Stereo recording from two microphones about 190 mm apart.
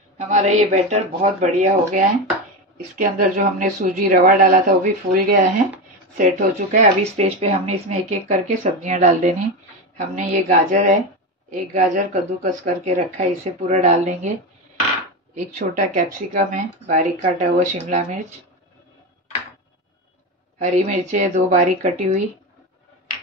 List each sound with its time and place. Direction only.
0.3 s a woman's voice: 40° right (ahead or behind)
15.3 s a woman's voice: 40° right (ahead or behind)
20.5 s a woman's voice: 40° right (ahead or behind)